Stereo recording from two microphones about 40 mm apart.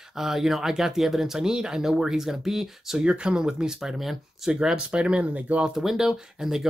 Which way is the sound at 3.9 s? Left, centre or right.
Centre.